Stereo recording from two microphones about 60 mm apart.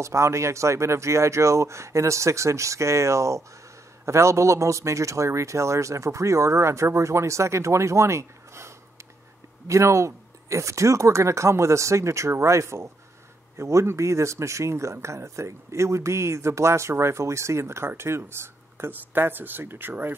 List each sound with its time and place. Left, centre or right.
0.0 s a man's voice: right